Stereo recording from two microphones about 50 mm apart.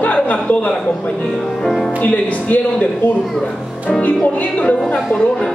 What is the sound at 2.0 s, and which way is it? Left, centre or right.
Speech, left.